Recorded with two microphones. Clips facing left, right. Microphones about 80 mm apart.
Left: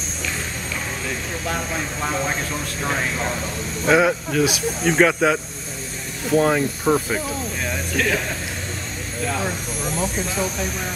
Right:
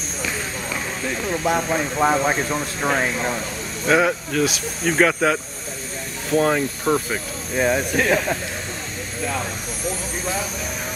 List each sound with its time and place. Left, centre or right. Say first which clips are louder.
1.4 s speech: right 6 dB; right
2.8 s speech: right 2 dB; centre
3.8 s speech: left 1 dB; centre
7.5 s speech: right 8 dB; right
7.9 s speech: right 3 dB; centre